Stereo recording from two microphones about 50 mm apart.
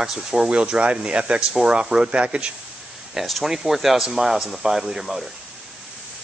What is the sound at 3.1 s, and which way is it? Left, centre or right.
Speech, centre.